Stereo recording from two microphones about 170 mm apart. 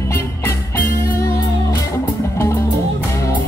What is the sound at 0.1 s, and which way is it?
Music, 15° left (ahead or behind).